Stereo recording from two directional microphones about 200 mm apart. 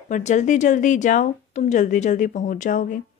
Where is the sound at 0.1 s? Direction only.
35° left (ahead or behind).